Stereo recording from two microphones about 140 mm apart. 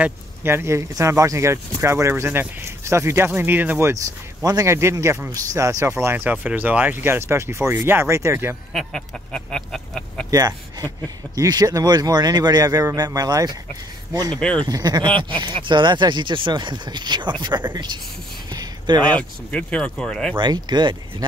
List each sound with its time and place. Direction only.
0.0 s speech: 15° right (ahead or behind)
8.7 s speech: 5° left (ahead or behind)
10.3 s speech: 25° right (ahead or behind)
18.5 s a sound: 30° right (ahead or behind)
19.1 s speech: 10° left (ahead or behind)
20.3 s speech: 30° right (ahead or behind)